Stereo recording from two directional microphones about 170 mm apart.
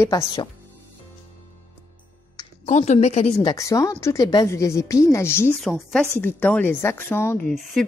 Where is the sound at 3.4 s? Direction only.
20° left (ahead or behind).